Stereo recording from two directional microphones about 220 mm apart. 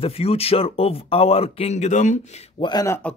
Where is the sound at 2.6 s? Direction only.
20° left (ahead or behind).